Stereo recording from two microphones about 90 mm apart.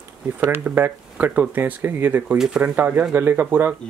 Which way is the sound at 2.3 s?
5° right (ahead or behind).